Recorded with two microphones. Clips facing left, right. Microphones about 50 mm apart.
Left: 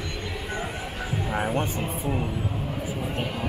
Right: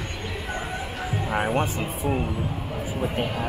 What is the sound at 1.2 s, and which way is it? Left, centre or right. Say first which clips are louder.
Music: right 2 dB; centre.